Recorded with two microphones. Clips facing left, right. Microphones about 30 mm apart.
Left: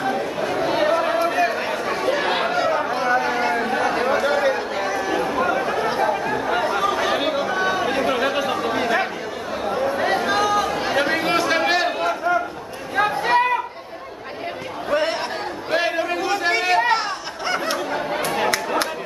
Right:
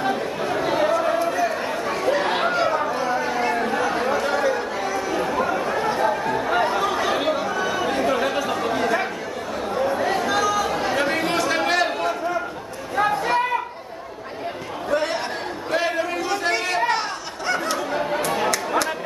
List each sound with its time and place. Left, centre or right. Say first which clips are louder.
0.1 s chatter: left 1 dB; centre
0.7 s a sound: left 1 dB; left
1.9 s chatter: even; centre
2.9 s chatter: left 3 dB; left
4.4 s chatter: left 2 dB; left
4.8 s chatter: left 2 dB; centre
7.5 s chatter: left 3 dB; left
7.8 s chatter: left 1 dB; centre
10.1 s chatter: left 2 dB; left
10.8 s chatter: left 1 dB; centre
13.0 s chatter: left 2 dB; left
14.9 s chatter: left 1 dB; left